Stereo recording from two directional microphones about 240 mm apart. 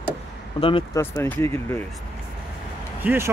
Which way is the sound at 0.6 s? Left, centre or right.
Left.